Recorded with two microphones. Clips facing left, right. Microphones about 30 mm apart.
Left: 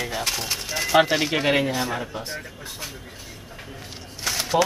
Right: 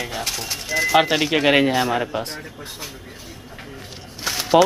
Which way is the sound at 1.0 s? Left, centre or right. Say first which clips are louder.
Left 1 dB; centre.